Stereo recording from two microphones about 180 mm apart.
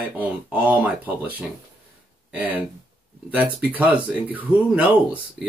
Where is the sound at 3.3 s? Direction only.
10° right (ahead or behind).